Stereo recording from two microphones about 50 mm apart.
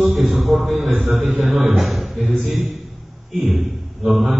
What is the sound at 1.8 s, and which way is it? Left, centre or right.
Speech, centre.